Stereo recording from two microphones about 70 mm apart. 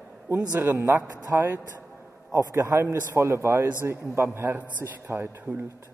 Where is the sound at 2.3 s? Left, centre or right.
Right.